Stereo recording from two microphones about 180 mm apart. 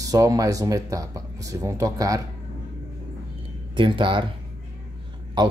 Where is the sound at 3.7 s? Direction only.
30° right (ahead or behind).